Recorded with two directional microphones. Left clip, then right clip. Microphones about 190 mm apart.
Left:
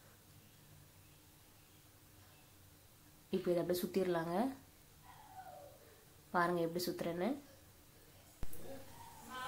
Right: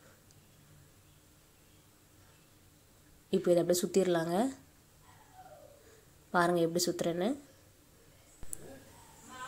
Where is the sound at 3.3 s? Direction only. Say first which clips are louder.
Right 8 dB; 25° right (ahead or behind).